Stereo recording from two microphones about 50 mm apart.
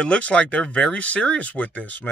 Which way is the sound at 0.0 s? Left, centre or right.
Left.